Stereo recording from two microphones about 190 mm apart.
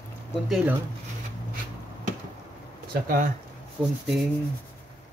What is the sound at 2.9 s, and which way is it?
Speech, 45° right (ahead or behind).